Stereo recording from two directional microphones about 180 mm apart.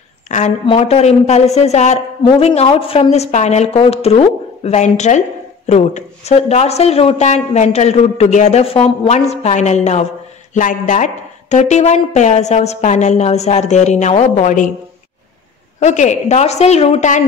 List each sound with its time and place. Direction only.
0.3 s a sound: 40° left (ahead or behind)
0.7 s a woman's voice: 35° left (ahead or behind)
15.8 s a woman's voice: 40° left (ahead or behind)